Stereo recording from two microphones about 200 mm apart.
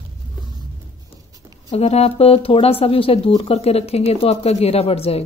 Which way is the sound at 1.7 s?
30° left (ahead or behind).